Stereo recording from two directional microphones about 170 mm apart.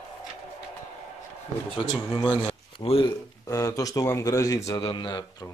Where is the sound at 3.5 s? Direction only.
20° left (ahead or behind).